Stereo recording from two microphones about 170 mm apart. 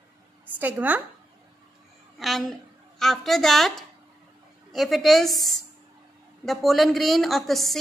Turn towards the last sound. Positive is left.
turn(degrees=0)  # may be behind; listen again after turning